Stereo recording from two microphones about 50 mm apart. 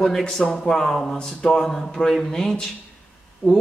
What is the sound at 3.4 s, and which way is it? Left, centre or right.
Speech, centre.